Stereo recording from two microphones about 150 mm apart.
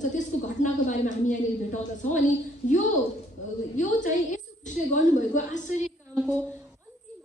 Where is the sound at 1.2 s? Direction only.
55° left (ahead or behind).